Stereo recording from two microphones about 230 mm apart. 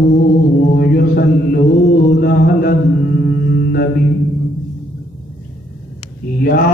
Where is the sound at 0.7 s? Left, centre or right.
Left.